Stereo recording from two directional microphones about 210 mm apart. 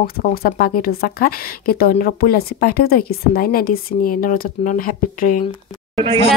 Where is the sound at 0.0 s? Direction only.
45° left (ahead or behind).